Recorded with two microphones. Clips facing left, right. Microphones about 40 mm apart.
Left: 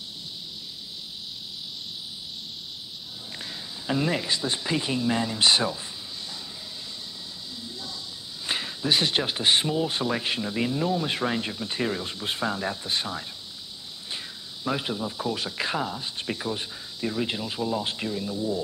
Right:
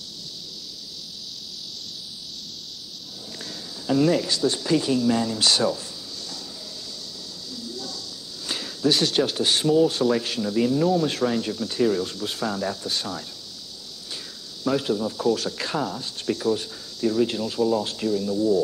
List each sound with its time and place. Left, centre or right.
3.3 s speech: left
7.5 s a sound: left
8.5 s speech: left
11.1 s speech: left
14.6 s speech: centre
17.8 s speech: left
18.3 s speech: centre